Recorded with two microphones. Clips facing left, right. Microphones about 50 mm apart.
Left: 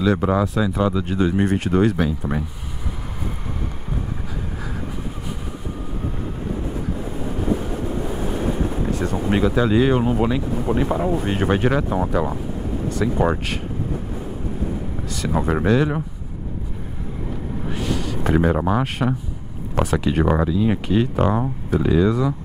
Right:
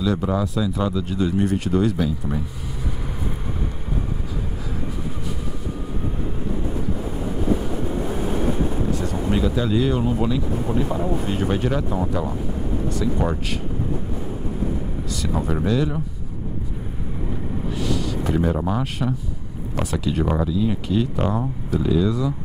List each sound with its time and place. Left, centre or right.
0.0 s speech: left
9.0 s speech: left
15.1 s speech: left
17.7 s a sound: left
19.7 s speech: left